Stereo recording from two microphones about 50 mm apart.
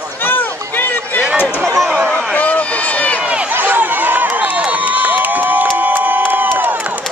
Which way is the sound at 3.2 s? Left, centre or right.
Right.